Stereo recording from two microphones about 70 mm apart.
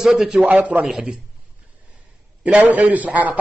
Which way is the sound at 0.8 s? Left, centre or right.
Centre.